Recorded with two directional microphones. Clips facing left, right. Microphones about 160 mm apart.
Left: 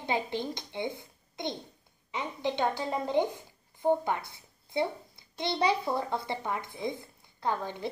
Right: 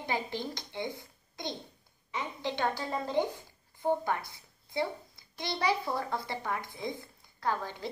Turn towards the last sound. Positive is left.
turn(degrees=20)  # may be behind; listen again after turning